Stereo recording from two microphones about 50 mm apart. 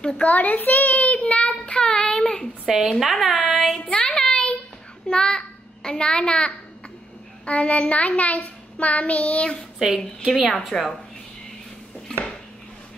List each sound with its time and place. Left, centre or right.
0.0 s a child's voice: centre
0.3 s child singing: left
1.9 s a child's voice: centre
2.6 s a woman's voice: centre
3.9 s a sound: centre
5.0 s a child's voice: centre
7.4 s child singing: left
10.2 s a woman's voice: centre
10.7 s child singing: left